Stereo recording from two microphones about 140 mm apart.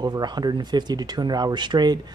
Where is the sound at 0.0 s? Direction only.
30° right (ahead or behind).